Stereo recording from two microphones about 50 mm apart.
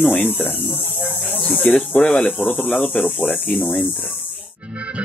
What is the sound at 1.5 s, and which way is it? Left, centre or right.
Speech, left.